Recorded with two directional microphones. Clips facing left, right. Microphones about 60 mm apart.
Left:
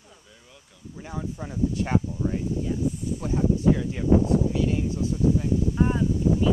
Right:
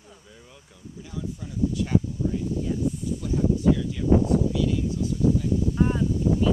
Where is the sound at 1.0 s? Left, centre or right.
Left.